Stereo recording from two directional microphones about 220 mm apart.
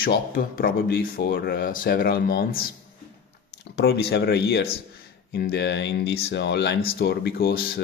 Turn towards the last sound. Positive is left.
turn(degrees=45)  # may be behind; listen again after turning